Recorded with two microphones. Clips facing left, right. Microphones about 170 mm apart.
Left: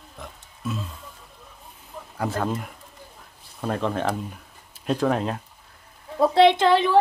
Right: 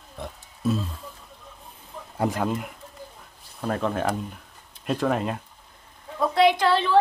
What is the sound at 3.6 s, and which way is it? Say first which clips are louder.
Speech: even; centre (ahead or behind).